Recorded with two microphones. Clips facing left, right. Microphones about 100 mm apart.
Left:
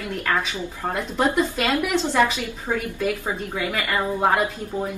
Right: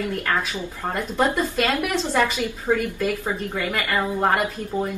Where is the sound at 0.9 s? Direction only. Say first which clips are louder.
Left 1 dB; 10° left (ahead or behind).